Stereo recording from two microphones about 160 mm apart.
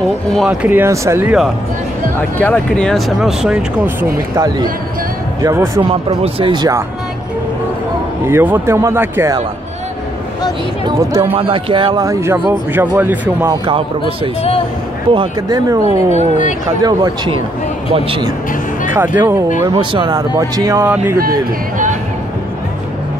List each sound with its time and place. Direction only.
0.3 s speech: 5° right (ahead or behind)
2.1 s speech: 10° left (ahead or behind); by 5.7 s 20° right (ahead or behind)
5.8 s speech: 30° right (ahead or behind)
8.3 s speech: 15° right (ahead or behind)
11.0 s speech: 15° right (ahead or behind)
11.3 s a man's voice: 35° right (ahead or behind)
12.1 s speech: 15° right (ahead or behind)
13.5 s a man's voice: 35° right (ahead or behind)
15.8 s speech: 45° right (ahead or behind)
16.8 s a man's voice: 25° right (ahead or behind)
18.9 s speech: 15° right (ahead or behind)
19.6 s speech: 30° right (ahead or behind)
21.2 s speech: 60° right (ahead or behind)